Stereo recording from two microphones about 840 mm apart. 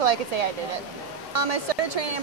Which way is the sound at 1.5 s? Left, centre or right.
Right.